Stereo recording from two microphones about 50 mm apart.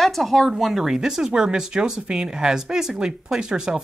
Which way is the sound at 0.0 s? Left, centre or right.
Centre.